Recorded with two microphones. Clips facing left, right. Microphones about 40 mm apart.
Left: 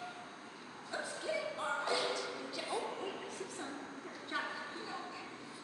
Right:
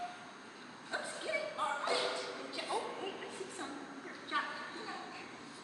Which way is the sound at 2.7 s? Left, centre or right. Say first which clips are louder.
Right 1 dB; right.